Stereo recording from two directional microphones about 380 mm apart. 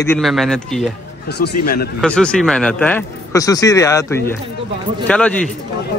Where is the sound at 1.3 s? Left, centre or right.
Left.